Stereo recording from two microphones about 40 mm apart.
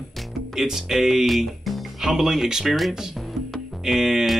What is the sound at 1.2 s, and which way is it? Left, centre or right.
Speech, centre.